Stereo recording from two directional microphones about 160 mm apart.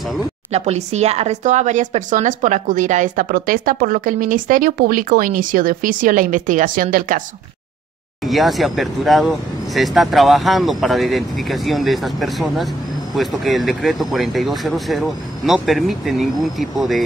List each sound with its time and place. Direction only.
0.5 s speech: 40° right (ahead or behind); by 7.2 s 60° right (ahead or behind)
8.3 s speech: centre (ahead or behind)